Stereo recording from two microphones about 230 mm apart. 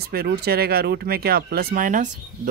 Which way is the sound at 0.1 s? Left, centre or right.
Right.